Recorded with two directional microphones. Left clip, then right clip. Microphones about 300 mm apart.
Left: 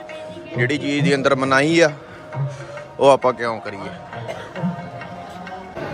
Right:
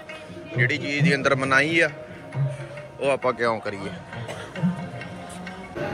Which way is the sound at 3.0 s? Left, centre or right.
Centre.